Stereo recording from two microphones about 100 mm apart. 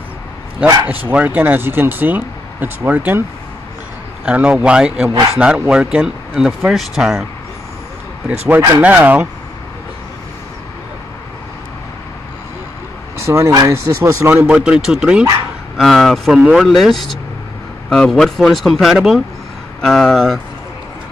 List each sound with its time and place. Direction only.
0.8 s speech: 15° right (ahead or behind)
4.3 s speech: 10° right (ahead or behind)
8.3 s speech: 20° right (ahead or behind)
13.2 s speech: 25° right (ahead or behind)
14.3 s speech: 10° right (ahead or behind)
15.8 s speech: 5° left (ahead or behind)